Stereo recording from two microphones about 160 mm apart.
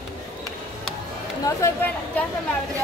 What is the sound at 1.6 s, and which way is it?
Speech, 15° left (ahead or behind).